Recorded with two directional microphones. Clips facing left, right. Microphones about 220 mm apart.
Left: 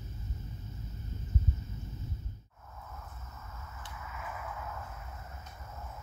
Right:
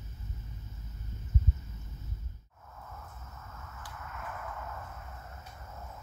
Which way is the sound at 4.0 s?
5° left (ahead or behind).